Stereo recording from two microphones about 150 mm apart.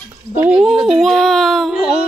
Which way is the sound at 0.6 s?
Centre (ahead or behind).